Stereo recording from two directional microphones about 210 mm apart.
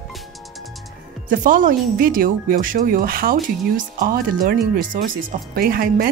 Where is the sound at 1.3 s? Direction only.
40° right (ahead or behind).